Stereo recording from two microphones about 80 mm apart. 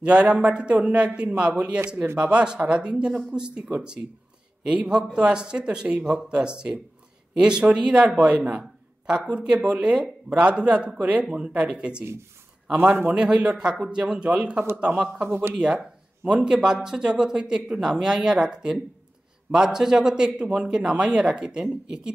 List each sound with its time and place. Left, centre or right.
0.0 s a man's voice: centre
12.7 s a man's voice: right
13.1 s a man's voice: centre
15.2 s speech: right
15.5 s a man's voice: centre